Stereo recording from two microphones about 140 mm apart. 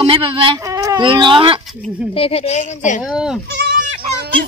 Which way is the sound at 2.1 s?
45° left (ahead or behind).